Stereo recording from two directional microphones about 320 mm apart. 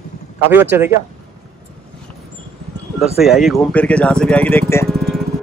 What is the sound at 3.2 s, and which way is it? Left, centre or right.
Speech, centre.